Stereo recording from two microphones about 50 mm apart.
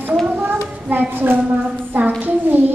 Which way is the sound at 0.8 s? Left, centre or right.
Right.